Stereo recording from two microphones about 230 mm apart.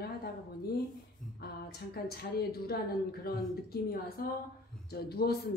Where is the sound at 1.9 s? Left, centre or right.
Left.